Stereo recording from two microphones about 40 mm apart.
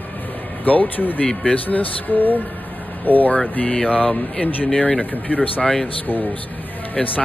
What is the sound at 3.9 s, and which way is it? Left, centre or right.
Speech, left.